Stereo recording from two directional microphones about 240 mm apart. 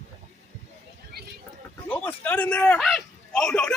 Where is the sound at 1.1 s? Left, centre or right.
Right.